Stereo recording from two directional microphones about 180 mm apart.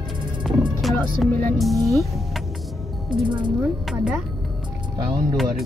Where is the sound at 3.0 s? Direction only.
25° right (ahead or behind).